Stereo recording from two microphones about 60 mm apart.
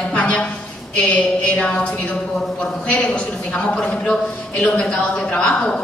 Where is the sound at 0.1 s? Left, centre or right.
Left.